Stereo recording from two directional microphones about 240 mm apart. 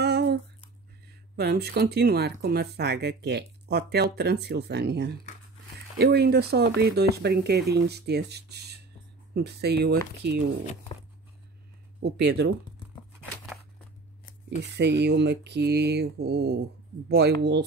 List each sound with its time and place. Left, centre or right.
0.0 s a sound: right
1.3 s speech: right
10.6 s speech: left
12.2 s speech: right
14.6 s speech: right